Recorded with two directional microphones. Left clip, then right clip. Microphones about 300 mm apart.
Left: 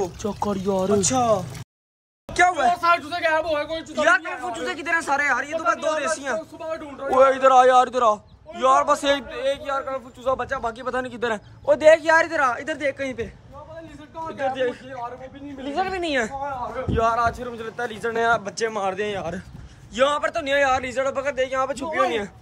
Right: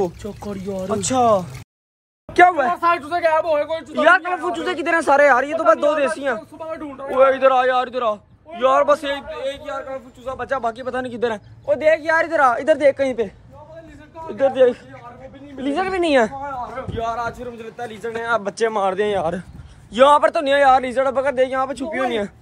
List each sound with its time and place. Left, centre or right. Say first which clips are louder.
0.2 s a man's voice: left 5 dB; centre
0.9 s a man's voice: right 6 dB; centre
2.8 s speech: right 3 dB; centre
4.0 s a man's voice: right 5 dB; centre
11.6 s a man's voice: left 2 dB; centre
14.4 s speech: right 9 dB; centre
16.9 s a man's voice: left 5 dB; centre